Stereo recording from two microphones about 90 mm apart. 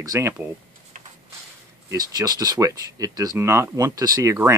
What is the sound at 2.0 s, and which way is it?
Speech, 45° right (ahead or behind).